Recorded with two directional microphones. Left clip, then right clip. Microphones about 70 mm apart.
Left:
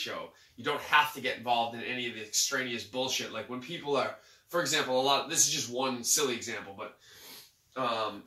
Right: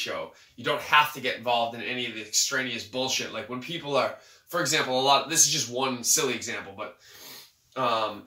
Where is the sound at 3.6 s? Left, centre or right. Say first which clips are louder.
Right 5 dB; right.